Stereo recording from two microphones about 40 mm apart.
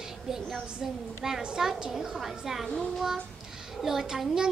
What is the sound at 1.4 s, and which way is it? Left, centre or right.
Speech, right.